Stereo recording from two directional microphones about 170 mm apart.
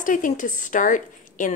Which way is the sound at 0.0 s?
50° left (ahead or behind).